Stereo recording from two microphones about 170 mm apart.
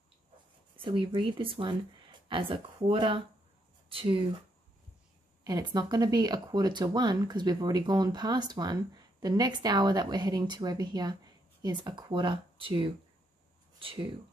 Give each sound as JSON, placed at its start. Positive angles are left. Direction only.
{"t": 0.8, "sound": "speech", "side_deg": -30}
{"t": 5.4, "sound": "speech", "side_deg": -25}